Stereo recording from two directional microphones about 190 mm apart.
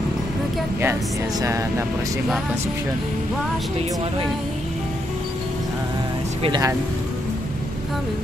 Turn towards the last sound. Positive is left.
turn(degrees=-20)  # may be behind; listen again after turning